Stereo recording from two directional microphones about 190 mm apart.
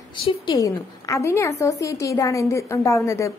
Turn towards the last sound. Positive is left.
turn(degrees=15)  # may be behind; listen again after turning